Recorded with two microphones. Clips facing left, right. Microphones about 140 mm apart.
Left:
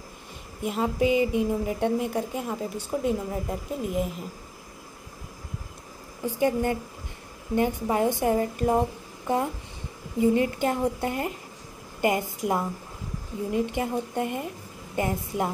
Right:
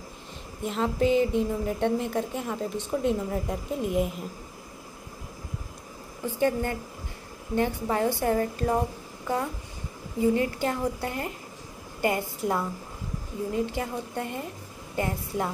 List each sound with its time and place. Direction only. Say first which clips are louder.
0.7 s a woman's voice: even; 10° left (ahead or behind)
6.2 s a woman's voice: left 2 dB; 15° left (ahead or behind)
10.2 s a woman's voice: left 2 dB; 20° left (ahead or behind)